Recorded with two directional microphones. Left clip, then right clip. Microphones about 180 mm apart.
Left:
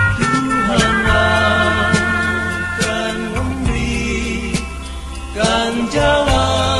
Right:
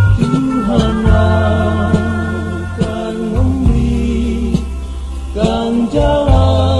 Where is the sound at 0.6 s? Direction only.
40° right (ahead or behind).